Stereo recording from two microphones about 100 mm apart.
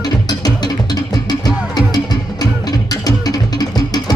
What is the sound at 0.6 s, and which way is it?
Music, 45° left (ahead or behind).